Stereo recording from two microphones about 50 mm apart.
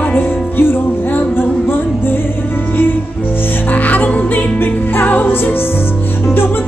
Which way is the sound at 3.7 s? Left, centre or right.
Left.